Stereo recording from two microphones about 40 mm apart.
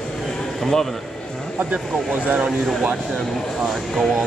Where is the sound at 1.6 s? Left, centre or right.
Right.